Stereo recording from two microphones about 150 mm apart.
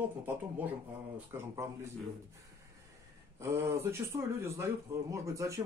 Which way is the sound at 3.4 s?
20° right (ahead or behind).